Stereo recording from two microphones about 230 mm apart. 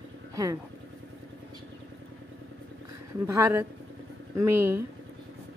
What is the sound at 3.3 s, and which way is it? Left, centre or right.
Speech, centre.